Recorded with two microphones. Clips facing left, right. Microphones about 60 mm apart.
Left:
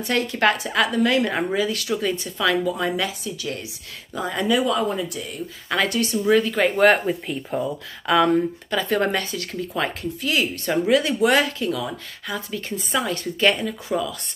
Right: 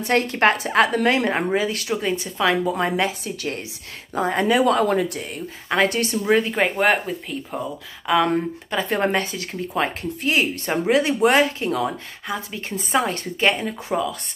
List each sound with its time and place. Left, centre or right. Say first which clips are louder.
0.0 s speech: right 2 dB; right
3.3 s speech: right 2 dB; right
4.6 s speech: right 4 dB; right
5.7 s speech: right 2 dB; right
6.6 s speech: left 2 dB; centre
8.3 s speech: left 2 dB; right